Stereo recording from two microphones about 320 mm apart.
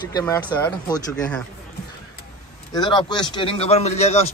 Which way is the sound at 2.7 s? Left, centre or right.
Centre.